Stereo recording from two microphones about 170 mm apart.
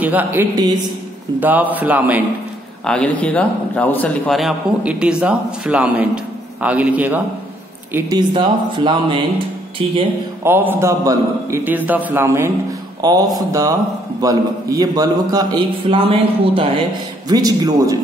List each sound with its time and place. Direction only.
0.0 s a man's voice: 10° right (ahead or behind)
2.8 s a man's voice: 5° left (ahead or behind)
7.9 s a man's voice: 25° right (ahead or behind)
10.4 s a man's voice: 10° right (ahead or behind)